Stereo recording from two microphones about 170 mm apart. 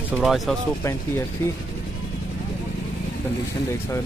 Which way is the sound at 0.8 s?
15° left (ahead or behind).